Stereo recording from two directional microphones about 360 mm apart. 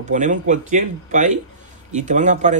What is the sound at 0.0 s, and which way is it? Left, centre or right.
Speech, right.